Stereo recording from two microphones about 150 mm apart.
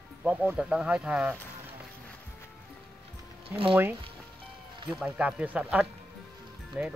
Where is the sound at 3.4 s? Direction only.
40° right (ahead or behind).